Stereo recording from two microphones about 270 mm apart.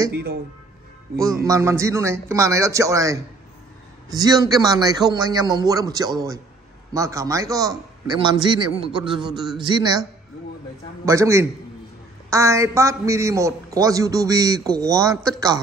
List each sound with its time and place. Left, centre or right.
0.1 s speech: right
1.1 s a man's voice: centre
11.1 s a man's voice: centre